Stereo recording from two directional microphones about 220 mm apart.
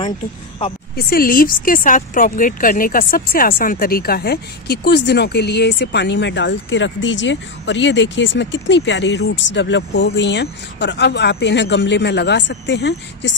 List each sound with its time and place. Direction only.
0.9 s speech: 40° left (ahead or behind)